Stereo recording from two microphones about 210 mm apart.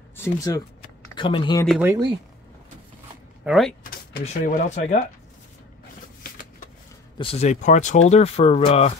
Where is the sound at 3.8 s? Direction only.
40° left (ahead or behind).